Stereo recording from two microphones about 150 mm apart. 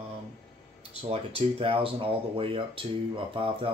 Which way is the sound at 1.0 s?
40° right (ahead or behind).